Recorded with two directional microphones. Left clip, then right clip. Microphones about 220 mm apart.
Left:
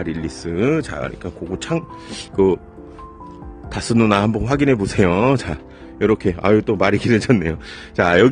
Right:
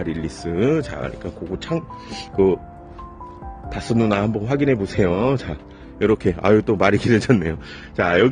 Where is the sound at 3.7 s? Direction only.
25° left (ahead or behind).